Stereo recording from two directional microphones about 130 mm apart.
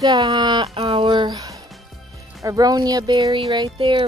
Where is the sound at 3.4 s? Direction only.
40° right (ahead or behind).